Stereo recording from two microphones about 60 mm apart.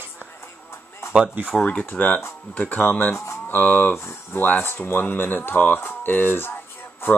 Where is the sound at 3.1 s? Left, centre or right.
Left.